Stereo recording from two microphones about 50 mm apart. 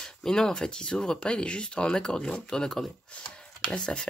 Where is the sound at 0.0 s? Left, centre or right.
Centre.